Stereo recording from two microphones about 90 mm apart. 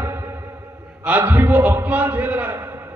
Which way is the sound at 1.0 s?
20° right (ahead or behind).